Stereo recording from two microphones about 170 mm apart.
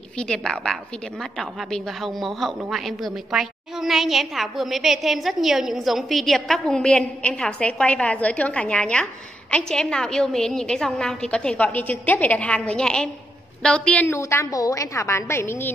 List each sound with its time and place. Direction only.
0.2 s a woman's voice: 5° left (ahead or behind)